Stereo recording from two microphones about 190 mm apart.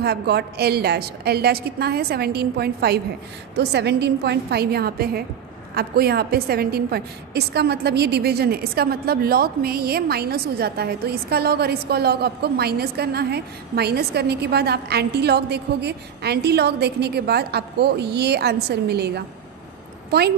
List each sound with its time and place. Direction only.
0.0 s a woman's voice: 55° right (ahead or behind)